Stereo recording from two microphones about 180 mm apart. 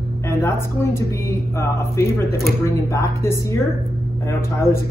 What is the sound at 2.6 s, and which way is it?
Speech, 15° left (ahead or behind).